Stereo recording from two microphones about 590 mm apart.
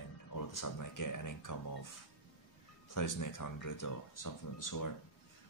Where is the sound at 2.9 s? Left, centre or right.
Left.